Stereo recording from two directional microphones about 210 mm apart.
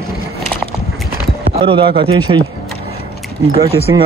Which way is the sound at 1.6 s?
25° right (ahead or behind).